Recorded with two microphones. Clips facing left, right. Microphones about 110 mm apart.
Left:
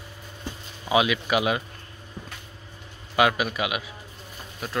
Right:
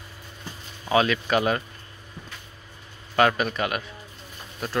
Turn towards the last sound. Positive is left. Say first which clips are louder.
# right 2 dB
turn(degrees=0)  # may be behind; listen again after turning